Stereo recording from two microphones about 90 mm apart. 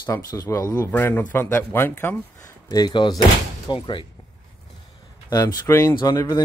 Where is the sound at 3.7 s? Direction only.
65° left (ahead or behind).